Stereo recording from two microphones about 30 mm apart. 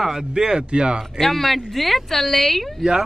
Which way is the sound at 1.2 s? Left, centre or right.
Centre.